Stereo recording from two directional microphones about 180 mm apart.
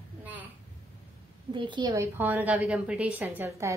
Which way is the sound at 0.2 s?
10° right (ahead or behind).